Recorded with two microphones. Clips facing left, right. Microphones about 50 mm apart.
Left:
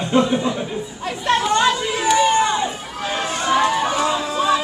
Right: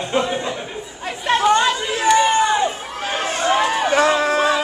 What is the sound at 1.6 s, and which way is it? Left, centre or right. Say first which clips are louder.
Chatter: even; centre.